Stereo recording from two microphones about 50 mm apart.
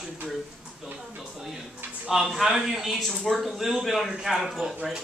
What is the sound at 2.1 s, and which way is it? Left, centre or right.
A man's voice, centre.